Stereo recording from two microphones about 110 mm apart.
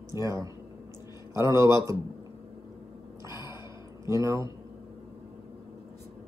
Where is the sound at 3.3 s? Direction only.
30° right (ahead or behind).